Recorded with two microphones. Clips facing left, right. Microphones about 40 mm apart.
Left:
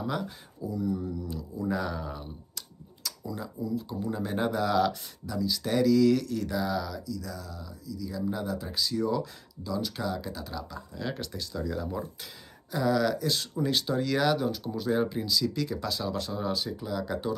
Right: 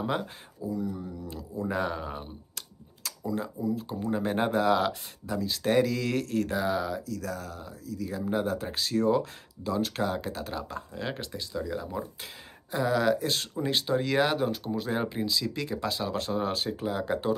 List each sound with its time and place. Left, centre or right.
0.0 s speech: right
0.6 s speech: centre
1.2 s speech: right
7.1 s speech: right
11.1 s speech: right
12.7 s speech: right